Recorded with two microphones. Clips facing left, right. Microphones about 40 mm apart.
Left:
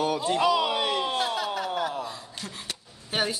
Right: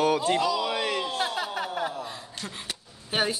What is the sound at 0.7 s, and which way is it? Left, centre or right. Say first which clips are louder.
Speech: left 1 dB; right.